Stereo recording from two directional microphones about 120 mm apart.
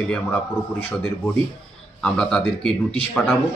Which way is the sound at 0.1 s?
15° left (ahead or behind).